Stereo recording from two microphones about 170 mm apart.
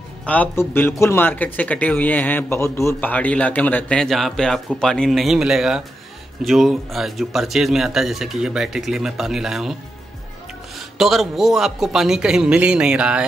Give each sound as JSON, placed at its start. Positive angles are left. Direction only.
{"t": 0.3, "sound": "a man's voice", "side_deg": 10}
{"t": 11.0, "sound": "speech", "side_deg": 0}